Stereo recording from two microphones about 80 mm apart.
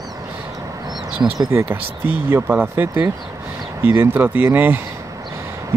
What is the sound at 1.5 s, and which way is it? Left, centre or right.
Speech, right.